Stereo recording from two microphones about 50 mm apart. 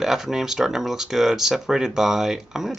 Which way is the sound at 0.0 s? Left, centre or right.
Centre.